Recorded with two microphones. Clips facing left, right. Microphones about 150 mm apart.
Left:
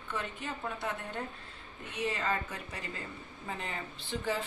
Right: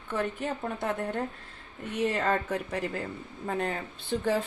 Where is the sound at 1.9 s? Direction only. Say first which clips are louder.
Right 6 dB; 65° right (ahead or behind).